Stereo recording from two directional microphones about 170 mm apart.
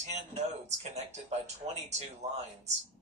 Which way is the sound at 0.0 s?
40° right (ahead or behind).